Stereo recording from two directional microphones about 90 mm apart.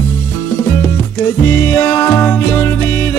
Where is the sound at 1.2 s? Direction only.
25° left (ahead or behind).